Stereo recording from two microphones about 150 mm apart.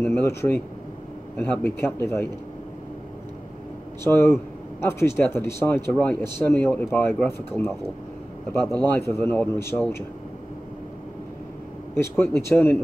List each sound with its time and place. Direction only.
0.0 s speech: 15° left (ahead or behind)
4.0 s speech: 15° left (ahead or behind)
11.9 s speech: 15° left (ahead or behind)